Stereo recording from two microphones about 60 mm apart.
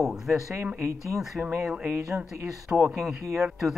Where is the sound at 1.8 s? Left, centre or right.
Right.